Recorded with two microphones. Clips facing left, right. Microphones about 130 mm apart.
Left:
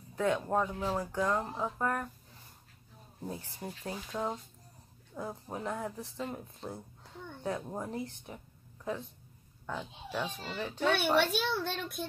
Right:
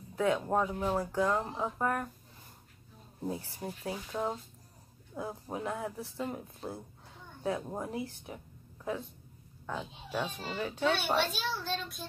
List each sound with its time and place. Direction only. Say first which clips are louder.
0.1 s speech: right 1 dB; 5° right (ahead or behind)
3.2 s speech: right 4 dB; 15° right (ahead or behind)
9.7 s speech: right 1 dB; 5° right (ahead or behind)
11.1 s a woman's voice: left 3 dB; 60° left (ahead or behind)